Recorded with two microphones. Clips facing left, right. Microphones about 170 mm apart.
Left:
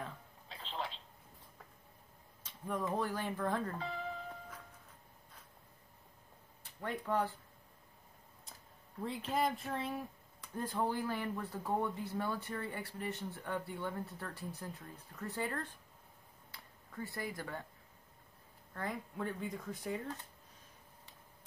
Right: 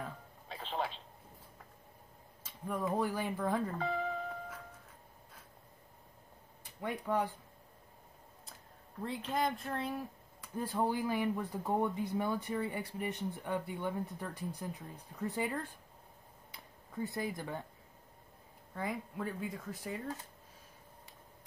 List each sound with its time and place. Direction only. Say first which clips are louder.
0.5 s telephone: right 5 dB; 55° right (ahead or behind)
2.4 s speech: right 2 dB; 10° right (ahead or behind)
3.8 s speech: right 6 dB; 55° right (ahead or behind)
6.6 s speech: right 2 dB; 10° right (ahead or behind)
9.0 s speech: even; centre (ahead or behind); by 17.6 s 20° right (ahead or behind)
18.7 s speech: right 2 dB; 10° right (ahead or behind)